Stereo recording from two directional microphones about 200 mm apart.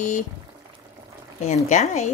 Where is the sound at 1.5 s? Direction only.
35° left (ahead or behind).